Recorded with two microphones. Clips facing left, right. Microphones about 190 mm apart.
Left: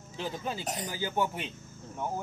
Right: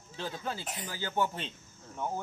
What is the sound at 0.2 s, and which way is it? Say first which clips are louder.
Speech: left 2 dB; 15° left (ahead or behind).